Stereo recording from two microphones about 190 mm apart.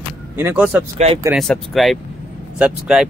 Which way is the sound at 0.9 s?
35° right (ahead or behind).